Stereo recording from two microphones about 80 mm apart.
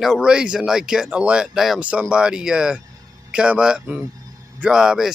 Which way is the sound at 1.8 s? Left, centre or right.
Centre.